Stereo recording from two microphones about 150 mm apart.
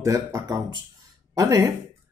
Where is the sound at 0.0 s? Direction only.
20° right (ahead or behind).